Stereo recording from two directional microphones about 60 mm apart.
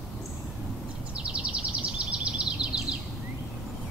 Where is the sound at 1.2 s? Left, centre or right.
Centre.